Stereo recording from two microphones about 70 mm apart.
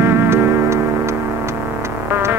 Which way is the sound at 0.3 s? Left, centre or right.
Right.